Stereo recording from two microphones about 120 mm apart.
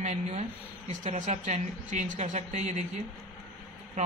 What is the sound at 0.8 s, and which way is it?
Speech, 90° right.